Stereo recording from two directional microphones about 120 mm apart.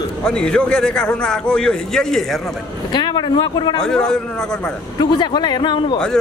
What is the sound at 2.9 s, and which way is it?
Speech, 40° left (ahead or behind).